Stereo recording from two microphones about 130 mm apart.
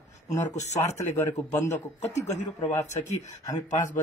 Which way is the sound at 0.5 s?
60° left (ahead or behind).